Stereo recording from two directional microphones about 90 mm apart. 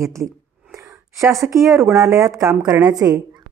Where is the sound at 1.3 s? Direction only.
Centre (ahead or behind).